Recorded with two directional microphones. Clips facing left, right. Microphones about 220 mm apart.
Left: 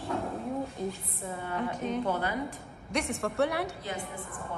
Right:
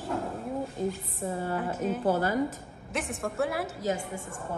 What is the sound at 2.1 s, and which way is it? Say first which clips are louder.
Speech: right 5 dB; 40° right (ahead or behind).